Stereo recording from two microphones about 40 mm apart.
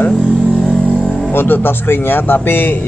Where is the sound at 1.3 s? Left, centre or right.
Left.